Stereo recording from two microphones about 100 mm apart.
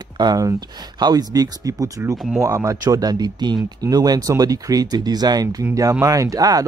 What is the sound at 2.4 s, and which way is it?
Speech, 30° right (ahead or behind).